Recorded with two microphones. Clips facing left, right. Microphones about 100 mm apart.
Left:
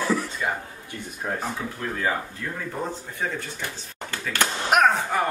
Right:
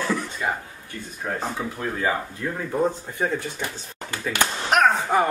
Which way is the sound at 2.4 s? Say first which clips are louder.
Right 4 dB; 20° right (ahead or behind).